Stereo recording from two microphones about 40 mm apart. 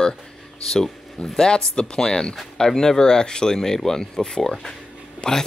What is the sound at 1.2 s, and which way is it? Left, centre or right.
Speech, centre.